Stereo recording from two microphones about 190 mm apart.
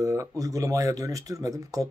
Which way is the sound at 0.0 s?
15° right (ahead or behind).